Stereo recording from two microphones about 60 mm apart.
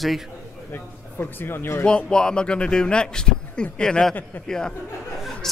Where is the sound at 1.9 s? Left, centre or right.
Centre.